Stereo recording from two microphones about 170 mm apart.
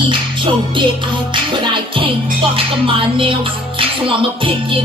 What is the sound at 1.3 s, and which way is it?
Music, 30° right (ahead or behind).